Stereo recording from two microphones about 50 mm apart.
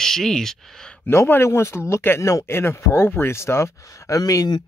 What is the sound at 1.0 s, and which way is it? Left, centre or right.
Speech, left.